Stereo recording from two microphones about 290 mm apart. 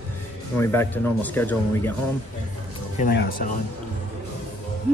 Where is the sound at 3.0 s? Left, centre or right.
Left.